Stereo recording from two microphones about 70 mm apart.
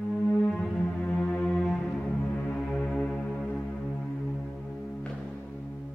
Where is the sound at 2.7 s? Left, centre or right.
Centre.